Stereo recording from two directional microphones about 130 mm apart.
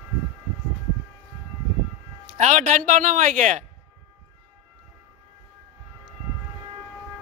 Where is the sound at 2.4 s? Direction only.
70° right (ahead or behind).